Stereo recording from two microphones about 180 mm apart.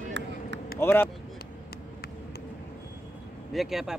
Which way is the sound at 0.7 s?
10° left (ahead or behind).